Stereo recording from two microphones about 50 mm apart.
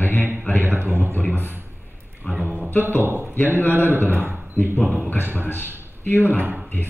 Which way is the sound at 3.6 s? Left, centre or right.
Left.